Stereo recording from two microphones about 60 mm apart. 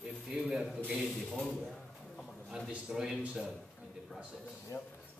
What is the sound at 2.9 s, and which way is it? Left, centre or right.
Speech, centre.